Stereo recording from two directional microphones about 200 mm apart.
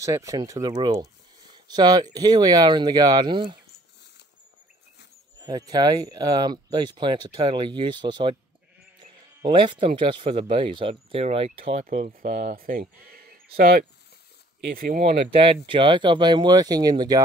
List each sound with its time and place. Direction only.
0.0 s speech: 15° right (ahead or behind)
5.4 s speech: 20° right (ahead or behind)
11.8 s speech: 45° right (ahead or behind)
15.6 s speech: 25° right (ahead or behind)